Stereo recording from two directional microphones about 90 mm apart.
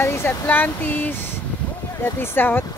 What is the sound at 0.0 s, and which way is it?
Speech, 25° left (ahead or behind).